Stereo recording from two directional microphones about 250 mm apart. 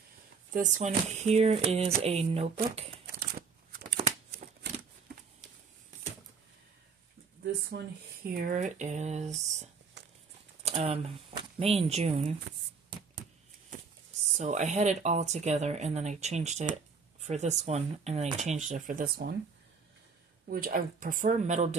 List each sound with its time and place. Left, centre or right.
0.5 s speech: right
3.1 s shuffling cards: right
7.7 s speech: right
8.3 s speech: right
14.3 s speech: right
20.4 s speech: right